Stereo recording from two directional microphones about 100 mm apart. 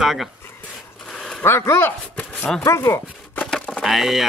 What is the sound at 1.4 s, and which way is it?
Speech, 25° left (ahead or behind).